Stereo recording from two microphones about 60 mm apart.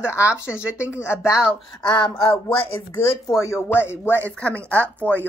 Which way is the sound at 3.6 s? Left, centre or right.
Left.